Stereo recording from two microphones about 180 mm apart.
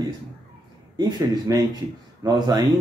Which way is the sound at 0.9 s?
20° right (ahead or behind).